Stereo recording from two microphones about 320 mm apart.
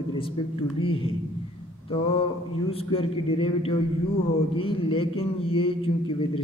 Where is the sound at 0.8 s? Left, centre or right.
Centre.